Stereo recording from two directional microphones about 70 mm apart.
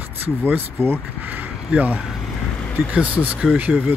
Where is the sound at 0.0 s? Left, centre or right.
Right.